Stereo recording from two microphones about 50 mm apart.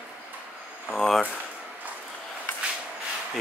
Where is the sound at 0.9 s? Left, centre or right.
Centre.